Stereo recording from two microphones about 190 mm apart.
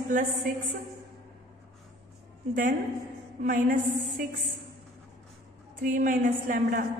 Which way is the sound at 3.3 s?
45° right (ahead or behind).